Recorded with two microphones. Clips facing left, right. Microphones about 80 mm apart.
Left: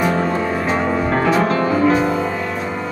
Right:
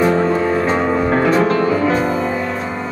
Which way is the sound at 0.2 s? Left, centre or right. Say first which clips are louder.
Right 4 dB; centre.